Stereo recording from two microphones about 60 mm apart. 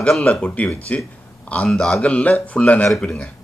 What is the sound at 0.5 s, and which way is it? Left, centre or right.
A man's voice, left.